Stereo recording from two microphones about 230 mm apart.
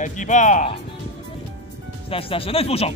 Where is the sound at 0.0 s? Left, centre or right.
Left.